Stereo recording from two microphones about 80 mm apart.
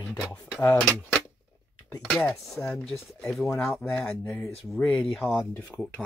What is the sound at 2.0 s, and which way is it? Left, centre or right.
Speech, centre.